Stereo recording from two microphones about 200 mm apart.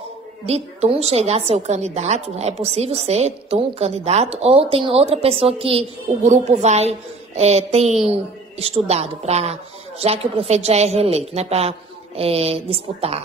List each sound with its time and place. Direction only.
0.5 s a woman's voice: 30° right (ahead or behind)